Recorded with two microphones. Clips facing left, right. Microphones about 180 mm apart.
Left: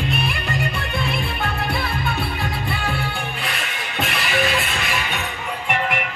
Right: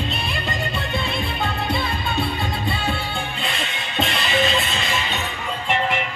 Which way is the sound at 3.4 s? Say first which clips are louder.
Right 1 dB; 25° right (ahead or behind).